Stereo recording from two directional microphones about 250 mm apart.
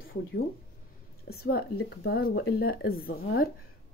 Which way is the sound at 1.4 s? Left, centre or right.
Left.